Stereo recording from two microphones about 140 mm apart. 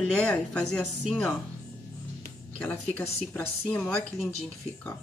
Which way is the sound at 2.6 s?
10° left (ahead or behind).